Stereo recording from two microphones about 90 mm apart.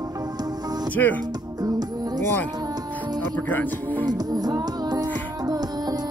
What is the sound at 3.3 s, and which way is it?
Speech, 20° left (ahead or behind).